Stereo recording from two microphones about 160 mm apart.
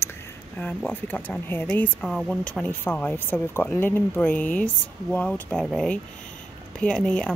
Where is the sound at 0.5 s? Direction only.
10° left (ahead or behind).